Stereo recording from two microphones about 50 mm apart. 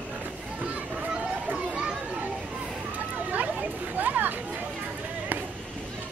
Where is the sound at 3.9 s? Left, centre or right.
Right.